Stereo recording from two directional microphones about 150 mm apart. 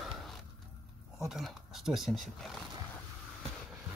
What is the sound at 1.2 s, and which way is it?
Speech, centre (ahead or behind).